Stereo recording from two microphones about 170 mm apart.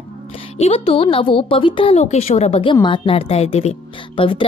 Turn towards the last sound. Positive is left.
turn(degrees=30)  # may be behind; listen again after turning